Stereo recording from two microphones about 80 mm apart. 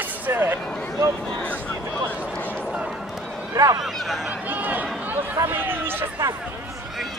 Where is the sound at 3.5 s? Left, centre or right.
Right.